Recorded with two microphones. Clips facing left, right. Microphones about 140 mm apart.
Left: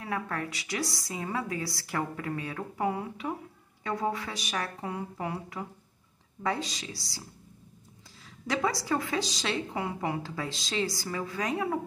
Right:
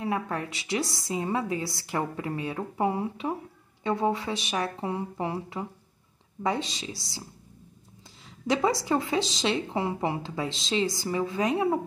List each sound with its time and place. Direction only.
0.0 s a woman's voice: 20° right (ahead or behind)
8.5 s a woman's voice: 25° right (ahead or behind)